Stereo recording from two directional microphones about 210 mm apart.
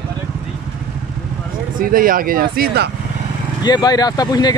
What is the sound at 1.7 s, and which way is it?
Speech, 40° right (ahead or behind).